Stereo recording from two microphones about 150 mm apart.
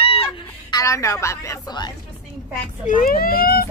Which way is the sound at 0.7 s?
20° left (ahead or behind).